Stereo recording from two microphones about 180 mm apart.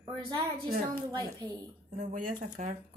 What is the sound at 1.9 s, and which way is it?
Speech, 40° right (ahead or behind).